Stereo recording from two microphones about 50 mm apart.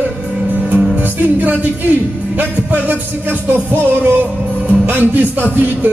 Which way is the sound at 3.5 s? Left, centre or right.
Right.